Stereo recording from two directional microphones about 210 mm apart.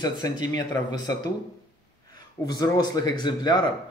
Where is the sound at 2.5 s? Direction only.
20° left (ahead or behind).